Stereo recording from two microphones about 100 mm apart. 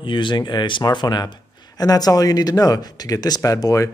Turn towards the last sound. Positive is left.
turn(degrees=35)  # may be behind; listen again after turning